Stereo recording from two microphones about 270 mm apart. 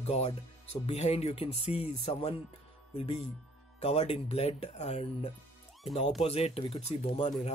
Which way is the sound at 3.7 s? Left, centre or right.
Left.